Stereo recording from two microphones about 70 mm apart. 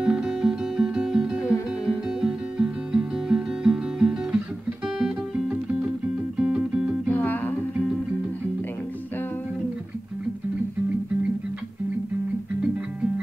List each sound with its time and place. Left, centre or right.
0.0 s music: centre
4.9 s guitar: centre
6.3 s music: centre
7.1 s music: left